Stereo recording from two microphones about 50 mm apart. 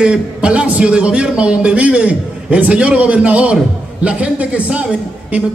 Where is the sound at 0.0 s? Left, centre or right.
Right.